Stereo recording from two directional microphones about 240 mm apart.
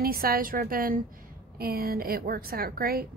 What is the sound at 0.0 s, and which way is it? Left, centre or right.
A woman's voice, right.